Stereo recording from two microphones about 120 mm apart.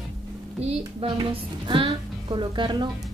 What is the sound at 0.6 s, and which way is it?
A woman's voice, 50° right (ahead or behind).